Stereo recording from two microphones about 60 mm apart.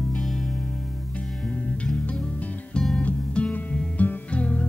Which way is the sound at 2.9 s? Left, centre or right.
Centre.